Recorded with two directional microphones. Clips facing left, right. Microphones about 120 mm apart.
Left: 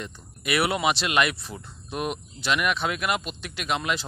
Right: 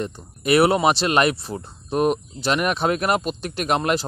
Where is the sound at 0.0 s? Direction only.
40° right (ahead or behind).